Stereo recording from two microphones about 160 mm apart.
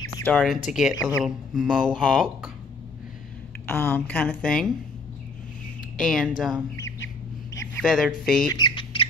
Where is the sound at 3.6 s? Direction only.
15° left (ahead or behind).